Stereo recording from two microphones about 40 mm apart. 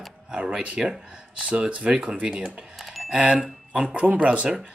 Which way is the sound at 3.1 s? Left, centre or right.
Right.